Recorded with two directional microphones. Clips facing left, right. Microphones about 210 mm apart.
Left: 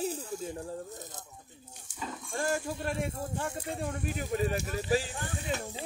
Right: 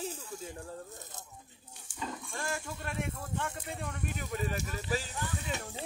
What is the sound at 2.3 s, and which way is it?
Speech, 40° left (ahead or behind).